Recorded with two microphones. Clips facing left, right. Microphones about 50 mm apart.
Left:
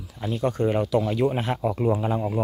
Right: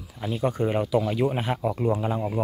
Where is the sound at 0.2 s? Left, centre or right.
Centre.